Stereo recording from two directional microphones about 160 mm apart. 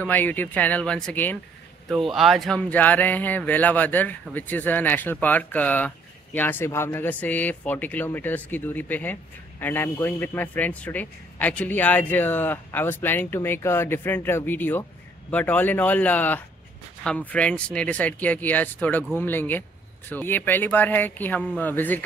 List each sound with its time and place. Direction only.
0.0 s speech: 10° left (ahead or behind)
1.9 s speech: centre (ahead or behind)